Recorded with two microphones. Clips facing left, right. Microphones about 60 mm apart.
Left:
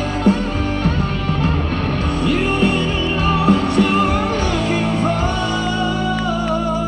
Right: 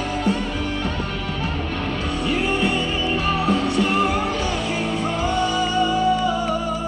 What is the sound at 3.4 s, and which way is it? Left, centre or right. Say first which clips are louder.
Music: left 6 dB; left.